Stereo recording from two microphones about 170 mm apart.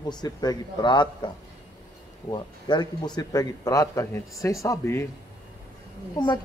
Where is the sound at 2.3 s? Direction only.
25° left (ahead or behind).